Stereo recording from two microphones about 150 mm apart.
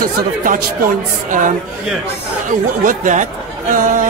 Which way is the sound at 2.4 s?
60° right (ahead or behind).